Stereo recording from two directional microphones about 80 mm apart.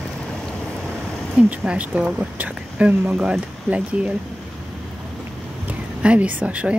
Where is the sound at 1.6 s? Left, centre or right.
Centre.